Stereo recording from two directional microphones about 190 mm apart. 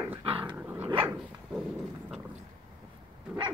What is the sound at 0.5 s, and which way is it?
Dog, 10° right (ahead or behind).